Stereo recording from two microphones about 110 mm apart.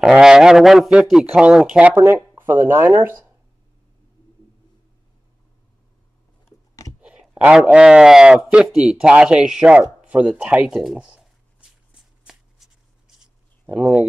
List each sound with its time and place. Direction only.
0.0 s speech: 5° right (ahead or behind)
6.7 s a sound: 30° left (ahead or behind)
7.0 s speech: 10° right (ahead or behind)
11.9 s shuffling cards: 5° right (ahead or behind)
13.7 s speech: 15° right (ahead or behind)